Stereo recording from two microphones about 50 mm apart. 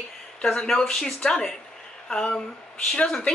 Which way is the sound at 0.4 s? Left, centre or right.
Centre.